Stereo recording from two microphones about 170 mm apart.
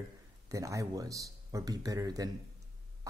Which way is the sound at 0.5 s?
20° right (ahead or behind).